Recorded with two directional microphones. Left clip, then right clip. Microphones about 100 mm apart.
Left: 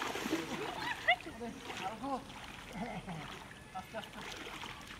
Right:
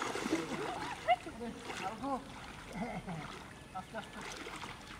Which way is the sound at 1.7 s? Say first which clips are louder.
Even; 10° right (ahead or behind).